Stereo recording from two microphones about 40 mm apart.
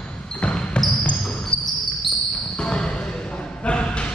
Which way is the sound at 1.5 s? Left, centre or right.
Left.